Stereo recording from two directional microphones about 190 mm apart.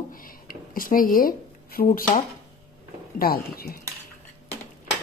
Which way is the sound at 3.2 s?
50° left (ahead or behind).